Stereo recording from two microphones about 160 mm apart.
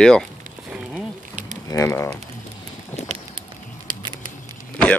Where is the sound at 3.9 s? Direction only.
30° right (ahead or behind).